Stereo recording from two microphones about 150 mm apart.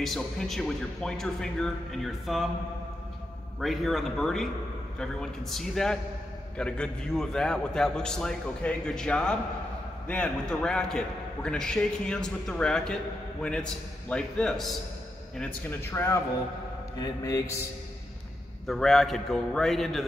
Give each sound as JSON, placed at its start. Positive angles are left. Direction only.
{"t": 0.0, "sound": "a man's voice", "side_deg": 0}
{"t": 3.6, "sound": "a man's voice", "side_deg": 0}
{"t": 17.0, "sound": "mantra", "side_deg": 25}
{"t": 18.7, "sound": "a man's voice", "side_deg": 0}